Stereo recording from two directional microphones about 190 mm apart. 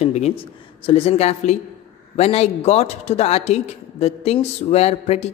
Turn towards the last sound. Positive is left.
turn(degrees=35)  # may be behind; listen again after turning